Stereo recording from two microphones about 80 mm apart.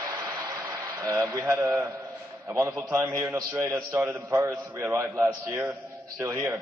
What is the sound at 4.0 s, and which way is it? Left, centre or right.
A man's voice, right.